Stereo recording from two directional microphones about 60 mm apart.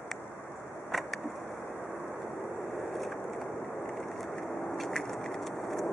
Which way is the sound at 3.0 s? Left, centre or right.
Centre.